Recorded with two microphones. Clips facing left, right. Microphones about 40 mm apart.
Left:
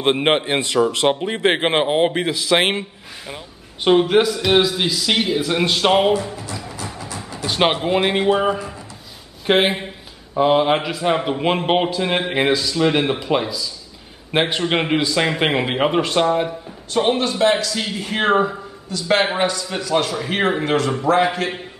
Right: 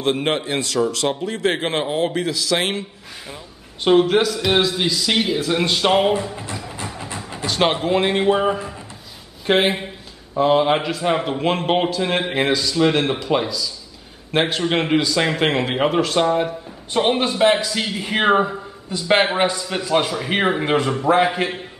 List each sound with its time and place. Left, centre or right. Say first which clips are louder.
0.0 s speech: left 3 dB; left
3.8 s a man's voice: left 1 dB; centre
7.4 s speech: left 1 dB; centre
8.2 s a man's voice: even; centre
16.9 s a man's voice: even; centre